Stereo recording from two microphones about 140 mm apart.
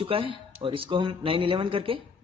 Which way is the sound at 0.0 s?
40° right (ahead or behind).